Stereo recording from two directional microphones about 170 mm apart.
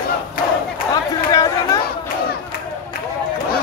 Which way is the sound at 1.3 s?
20° left (ahead or behind).